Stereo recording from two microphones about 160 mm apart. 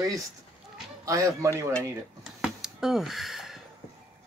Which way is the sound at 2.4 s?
5° right (ahead or behind).